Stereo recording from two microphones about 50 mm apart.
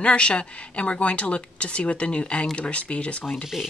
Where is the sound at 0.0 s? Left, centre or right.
Left.